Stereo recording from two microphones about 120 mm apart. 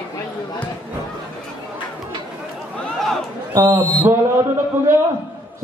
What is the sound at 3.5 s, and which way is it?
Speech, 20° right (ahead or behind).